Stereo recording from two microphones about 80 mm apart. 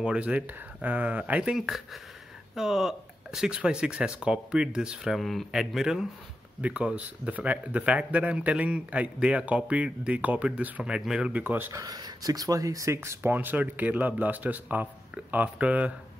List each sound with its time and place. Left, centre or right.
0.0 s speech: centre
11.4 s speech: right
11.7 s speech: right; by 15.9 s centre